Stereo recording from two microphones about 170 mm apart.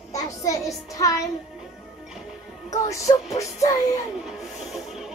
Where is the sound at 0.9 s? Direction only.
20° left (ahead or behind).